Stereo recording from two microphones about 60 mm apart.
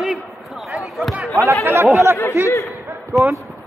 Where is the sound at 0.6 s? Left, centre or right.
Centre.